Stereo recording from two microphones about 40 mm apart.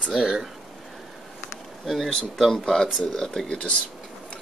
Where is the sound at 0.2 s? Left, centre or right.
Centre.